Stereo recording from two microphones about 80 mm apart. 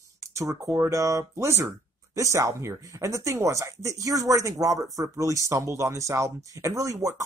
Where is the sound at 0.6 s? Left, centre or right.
Right.